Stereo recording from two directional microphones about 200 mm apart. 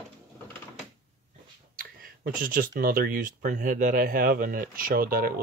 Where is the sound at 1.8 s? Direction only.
45° right (ahead or behind).